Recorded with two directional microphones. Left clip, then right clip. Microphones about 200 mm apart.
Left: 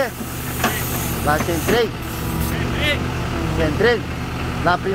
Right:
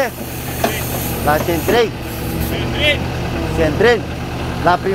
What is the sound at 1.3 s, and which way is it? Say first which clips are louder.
Speech: right 4 dB; 15° right (ahead or behind).